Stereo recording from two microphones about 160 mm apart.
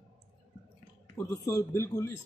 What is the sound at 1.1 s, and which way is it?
Speech, 20° left (ahead or behind).